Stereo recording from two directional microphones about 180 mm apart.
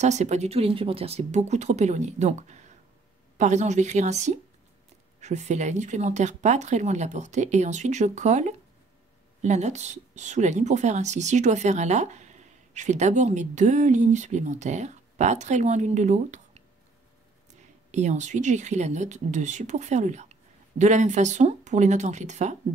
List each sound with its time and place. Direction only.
0.0 s a woman's voice: 40° right (ahead or behind)
17.9 s a woman's voice: 40° right (ahead or behind)